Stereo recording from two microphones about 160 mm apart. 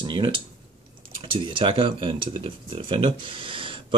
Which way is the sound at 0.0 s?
30° right (ahead or behind).